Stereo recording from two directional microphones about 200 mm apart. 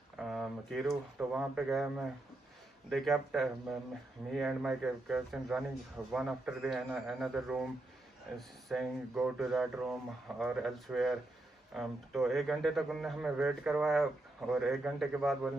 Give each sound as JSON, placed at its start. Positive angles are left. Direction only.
{"t": 0.2, "sound": "a man's voice", "side_deg": 0}